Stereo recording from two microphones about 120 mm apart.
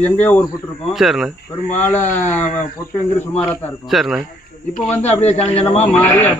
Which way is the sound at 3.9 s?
Centre (ahead or behind).